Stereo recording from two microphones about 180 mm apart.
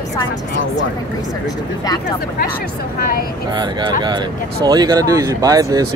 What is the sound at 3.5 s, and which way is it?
Speech, 25° right (ahead or behind).